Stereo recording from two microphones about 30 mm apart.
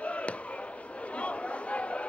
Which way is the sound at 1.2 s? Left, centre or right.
Left.